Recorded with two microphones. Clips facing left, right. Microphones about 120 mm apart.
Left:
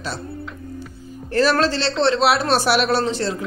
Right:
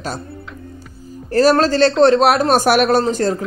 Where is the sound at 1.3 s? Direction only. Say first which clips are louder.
Right 5 dB; 40° right (ahead or behind).